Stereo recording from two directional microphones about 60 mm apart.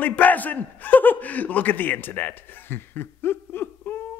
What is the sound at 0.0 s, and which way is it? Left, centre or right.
A man's voice, left.